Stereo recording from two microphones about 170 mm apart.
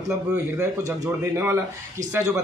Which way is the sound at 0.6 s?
15° right (ahead or behind).